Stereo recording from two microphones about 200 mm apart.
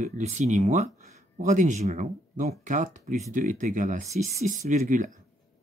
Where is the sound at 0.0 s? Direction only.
35° right (ahead or behind).